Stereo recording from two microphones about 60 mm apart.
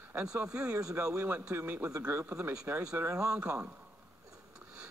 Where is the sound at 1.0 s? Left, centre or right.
Right.